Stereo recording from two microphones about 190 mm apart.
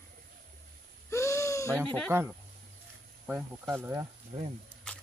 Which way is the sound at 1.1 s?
15° left (ahead or behind).